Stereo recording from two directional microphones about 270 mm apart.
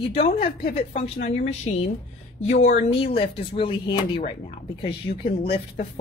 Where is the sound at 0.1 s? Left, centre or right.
Left.